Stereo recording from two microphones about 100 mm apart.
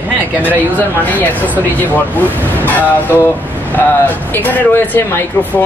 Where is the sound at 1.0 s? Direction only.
15° left (ahead or behind).